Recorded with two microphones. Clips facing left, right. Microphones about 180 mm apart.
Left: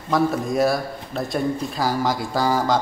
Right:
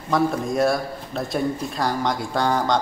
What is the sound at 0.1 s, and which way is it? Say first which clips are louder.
A man's voice: left 1 dB; centre (ahead or behind).